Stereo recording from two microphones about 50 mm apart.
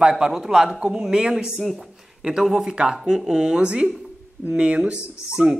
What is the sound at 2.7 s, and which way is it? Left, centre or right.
A man's voice, centre.